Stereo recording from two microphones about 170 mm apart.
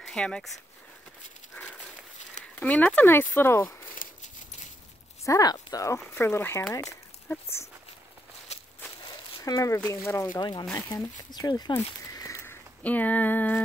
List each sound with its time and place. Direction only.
0.0 s speech: 5° left (ahead or behind)
2.6 s speech: 5° left (ahead or behind)
3.9 s horse: 50° left (ahead or behind)
5.2 s speech: 20° left (ahead or behind)
8.5 s walk: 40° left (ahead or behind)
9.4 s speech: 20° left (ahead or behind)